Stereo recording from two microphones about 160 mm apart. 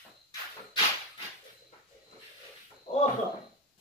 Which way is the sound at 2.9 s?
30° left (ahead or behind).